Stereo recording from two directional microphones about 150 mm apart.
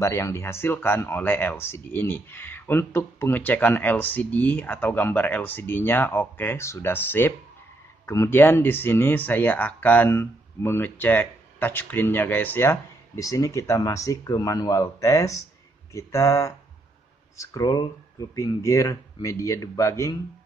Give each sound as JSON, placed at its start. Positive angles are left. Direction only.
{"t": 0.0, "sound": "speech", "side_deg": 20}